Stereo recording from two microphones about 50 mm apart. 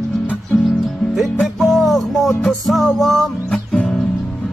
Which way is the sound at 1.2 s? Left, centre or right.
Centre.